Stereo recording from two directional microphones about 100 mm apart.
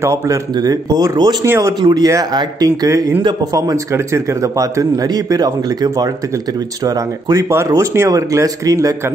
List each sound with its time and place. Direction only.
0.0 s a man's voice: 30° right (ahead or behind)
1.4 s speech: 30° right (ahead or behind)
1.8 s a man's voice: 45° right (ahead or behind)